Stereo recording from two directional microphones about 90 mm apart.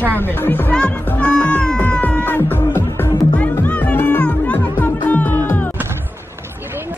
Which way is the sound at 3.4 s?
20° left (ahead or behind).